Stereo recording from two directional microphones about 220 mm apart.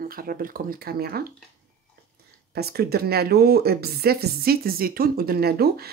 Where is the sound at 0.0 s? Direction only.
40° right (ahead or behind).